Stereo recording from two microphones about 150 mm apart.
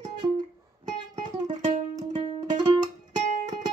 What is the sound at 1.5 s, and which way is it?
Music, 50° right (ahead or behind).